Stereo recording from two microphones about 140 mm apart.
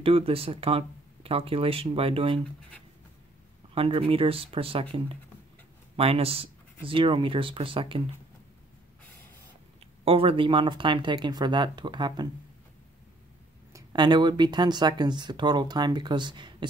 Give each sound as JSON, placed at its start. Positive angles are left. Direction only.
{"t": 0.0, "sound": "speech", "side_deg": -40}
{"t": 3.7, "sound": "speech", "side_deg": -40}
{"t": 5.9, "sound": "speech", "side_deg": -45}
{"t": 10.0, "sound": "speech", "side_deg": -40}
{"t": 13.7, "sound": "speech", "side_deg": -35}